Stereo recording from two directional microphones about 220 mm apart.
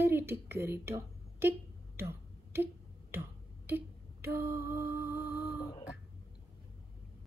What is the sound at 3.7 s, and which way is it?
Mantra, 10° right (ahead or behind).